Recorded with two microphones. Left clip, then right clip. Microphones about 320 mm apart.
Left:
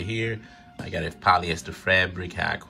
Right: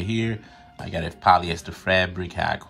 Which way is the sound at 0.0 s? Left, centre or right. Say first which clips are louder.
Right 1 dB; centre.